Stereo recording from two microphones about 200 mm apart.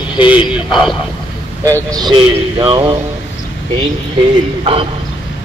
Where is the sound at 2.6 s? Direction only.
25° right (ahead or behind).